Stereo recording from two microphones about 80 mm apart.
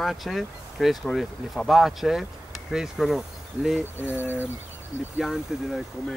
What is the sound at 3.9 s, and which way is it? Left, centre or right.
Speech, left.